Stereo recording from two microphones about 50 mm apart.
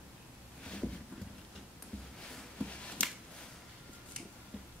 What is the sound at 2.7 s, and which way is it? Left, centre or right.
Finger snapping, left.